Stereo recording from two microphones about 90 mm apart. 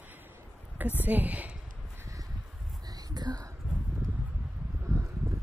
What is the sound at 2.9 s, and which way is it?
Whispering, 45° right (ahead or behind).